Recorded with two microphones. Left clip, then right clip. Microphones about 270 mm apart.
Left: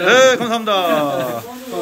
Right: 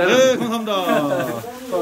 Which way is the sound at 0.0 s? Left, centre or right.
Centre.